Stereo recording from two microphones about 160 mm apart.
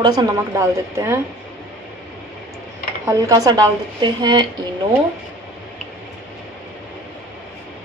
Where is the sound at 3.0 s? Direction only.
20° right (ahead or behind).